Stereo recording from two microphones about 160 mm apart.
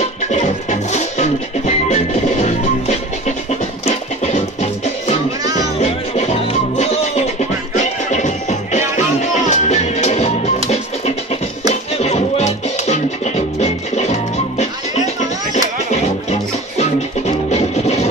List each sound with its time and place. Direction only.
0.3 s music: 45° left (ahead or behind)
2.4 s music: 45° left (ahead or behind)
12.0 s music: 45° left (ahead or behind)
15.9 s music: 45° left (ahead or behind)